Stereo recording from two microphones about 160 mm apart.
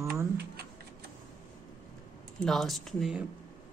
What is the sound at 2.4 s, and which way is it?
Speech, centre (ahead or behind).